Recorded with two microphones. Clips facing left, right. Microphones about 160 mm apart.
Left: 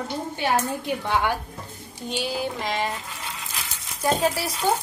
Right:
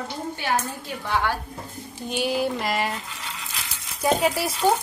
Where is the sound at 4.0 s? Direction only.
5° right (ahead or behind).